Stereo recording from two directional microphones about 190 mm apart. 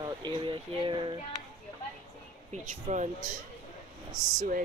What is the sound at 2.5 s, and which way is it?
Speech, 40° right (ahead or behind).